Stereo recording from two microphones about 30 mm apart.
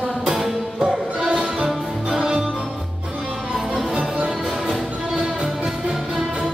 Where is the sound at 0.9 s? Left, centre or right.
Right.